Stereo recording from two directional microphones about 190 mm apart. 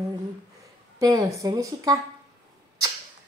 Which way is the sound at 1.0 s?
20° right (ahead or behind).